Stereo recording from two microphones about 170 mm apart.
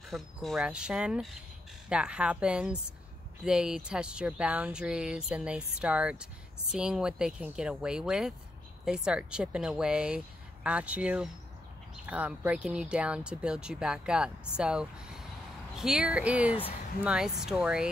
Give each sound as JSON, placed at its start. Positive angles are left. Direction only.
{"t": 0.1, "sound": "speech", "side_deg": 0}